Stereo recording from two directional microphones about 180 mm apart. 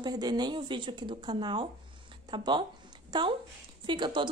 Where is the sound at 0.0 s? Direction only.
25° right (ahead or behind).